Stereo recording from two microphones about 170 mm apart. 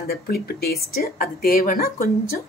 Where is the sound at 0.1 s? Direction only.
65° left (ahead or behind).